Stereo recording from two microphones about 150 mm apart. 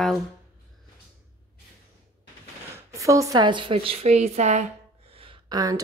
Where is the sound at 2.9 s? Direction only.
20° right (ahead or behind); by 4.6 s 50° right (ahead or behind).